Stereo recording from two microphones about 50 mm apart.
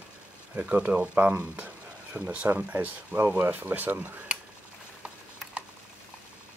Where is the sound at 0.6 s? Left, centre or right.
Right.